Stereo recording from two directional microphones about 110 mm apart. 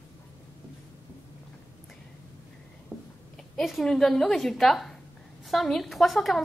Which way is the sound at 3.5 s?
Centre (ahead or behind).